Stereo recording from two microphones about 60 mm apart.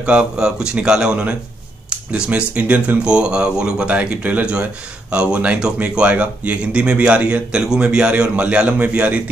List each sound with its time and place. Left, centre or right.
0.0 s a man's voice: centre